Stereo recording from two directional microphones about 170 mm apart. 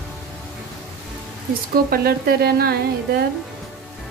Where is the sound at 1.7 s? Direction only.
65° right (ahead or behind).